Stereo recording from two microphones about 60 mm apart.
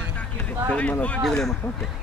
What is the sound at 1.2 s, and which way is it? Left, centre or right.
Speech, centre.